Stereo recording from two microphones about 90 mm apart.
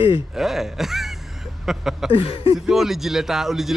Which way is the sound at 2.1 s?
90° left.